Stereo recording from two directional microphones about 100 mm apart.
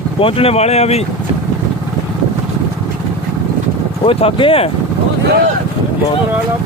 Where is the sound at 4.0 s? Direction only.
70° left (ahead or behind).